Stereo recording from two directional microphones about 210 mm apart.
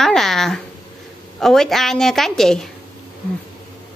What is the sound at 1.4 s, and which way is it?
A woman's voice, centre (ahead or behind).